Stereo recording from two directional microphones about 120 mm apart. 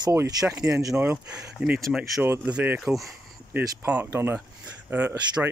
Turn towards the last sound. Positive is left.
turn(degrees=-15)  # may be behind; listen again after turning